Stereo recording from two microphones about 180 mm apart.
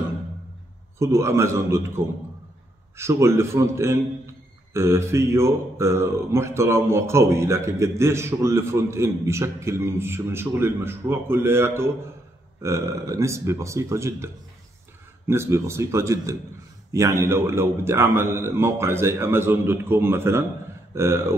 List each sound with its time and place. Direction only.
0.9 s a man's voice: 15° right (ahead or behind)